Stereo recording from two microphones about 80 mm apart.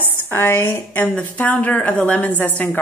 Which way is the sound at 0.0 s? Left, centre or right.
Left.